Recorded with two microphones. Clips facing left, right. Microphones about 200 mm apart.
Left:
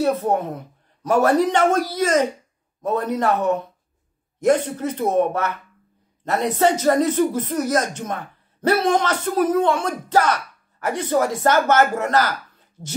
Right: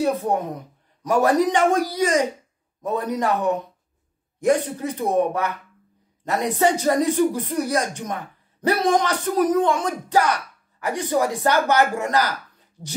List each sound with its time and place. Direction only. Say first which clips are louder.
0.3 s speech: left 2 dB; 15° right (ahead or behind)